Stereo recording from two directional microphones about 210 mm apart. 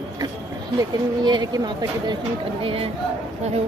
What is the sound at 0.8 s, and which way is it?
Speech, 20° right (ahead or behind).